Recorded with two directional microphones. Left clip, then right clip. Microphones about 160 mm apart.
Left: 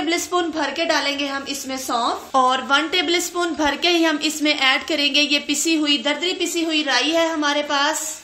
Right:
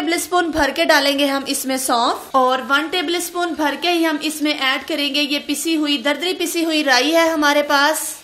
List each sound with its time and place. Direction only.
0.1 s a woman's voice: 30° right (ahead or behind)
2.3 s a woman's voice: 15° right (ahead or behind)
6.2 s a woman's voice: 30° right (ahead or behind)